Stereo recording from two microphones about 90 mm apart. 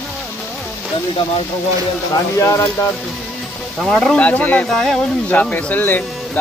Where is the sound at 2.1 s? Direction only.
35° left (ahead or behind).